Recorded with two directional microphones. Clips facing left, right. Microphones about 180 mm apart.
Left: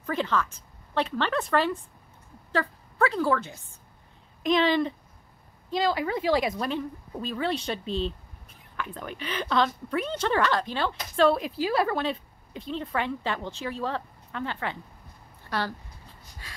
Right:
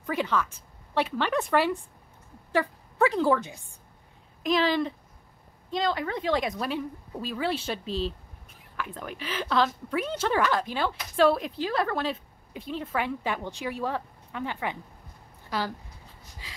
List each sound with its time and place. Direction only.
0.0 s a woman's voice: 10° right (ahead or behind)
4.4 s a woman's voice: centre (ahead or behind)
15.5 s a sound: 15° right (ahead or behind)